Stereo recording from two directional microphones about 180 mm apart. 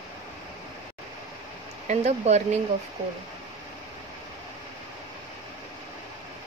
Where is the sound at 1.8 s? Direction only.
40° right (ahead or behind).